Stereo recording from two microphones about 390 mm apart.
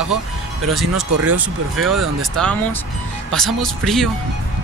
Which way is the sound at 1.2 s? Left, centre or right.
Right.